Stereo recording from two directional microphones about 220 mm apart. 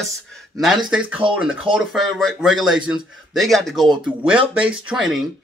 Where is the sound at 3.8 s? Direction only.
20° right (ahead or behind).